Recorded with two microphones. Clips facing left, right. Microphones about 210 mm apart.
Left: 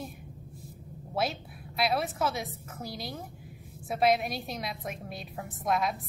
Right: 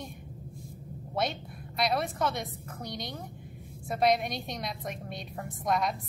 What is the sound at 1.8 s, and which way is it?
A woman's voice, centre (ahead or behind).